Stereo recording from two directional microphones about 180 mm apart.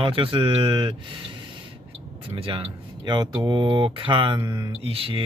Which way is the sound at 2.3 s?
30° right (ahead or behind).